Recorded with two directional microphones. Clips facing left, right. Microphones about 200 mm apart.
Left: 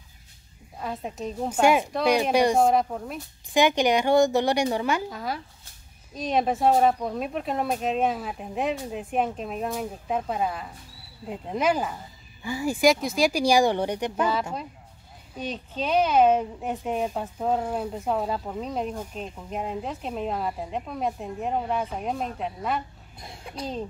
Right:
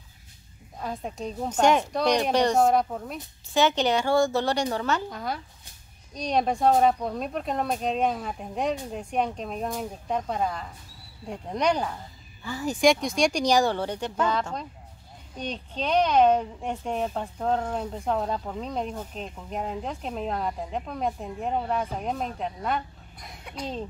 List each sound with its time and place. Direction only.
0.7 s a child's voice: centre (ahead or behind)
3.5 s speech: 15° left (ahead or behind)
5.1 s a child's voice: centre (ahead or behind)
23.1 s a child's voice: 30° left (ahead or behind)